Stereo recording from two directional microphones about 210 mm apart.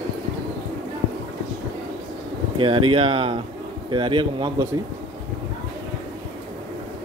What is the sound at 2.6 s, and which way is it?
Speech, 25° right (ahead or behind).